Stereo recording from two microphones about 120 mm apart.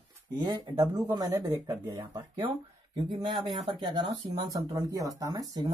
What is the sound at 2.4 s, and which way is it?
Speech, 45° right (ahead or behind).